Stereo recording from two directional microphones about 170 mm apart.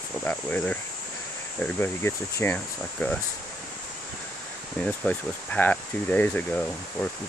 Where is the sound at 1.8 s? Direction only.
15° left (ahead or behind).